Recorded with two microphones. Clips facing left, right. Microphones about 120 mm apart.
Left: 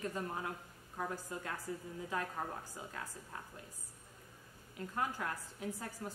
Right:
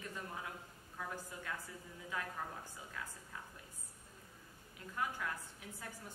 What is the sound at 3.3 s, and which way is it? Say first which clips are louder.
Speech: left 2 dB; 50° left (ahead or behind).